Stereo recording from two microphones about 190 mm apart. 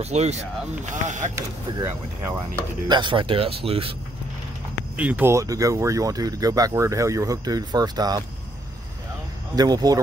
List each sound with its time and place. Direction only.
0.0 s speech: 35° right (ahead or behind)
1.3 s speech: 15° right (ahead or behind)
4.9 s speech: 10° right (ahead or behind)
9.6 s speech: 20° right (ahead or behind)